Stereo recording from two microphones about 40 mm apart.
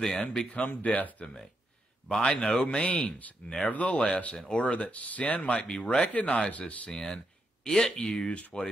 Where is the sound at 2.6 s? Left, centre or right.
Left.